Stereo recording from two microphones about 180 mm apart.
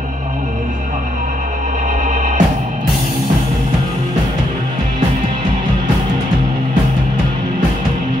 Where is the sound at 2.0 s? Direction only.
45° right (ahead or behind).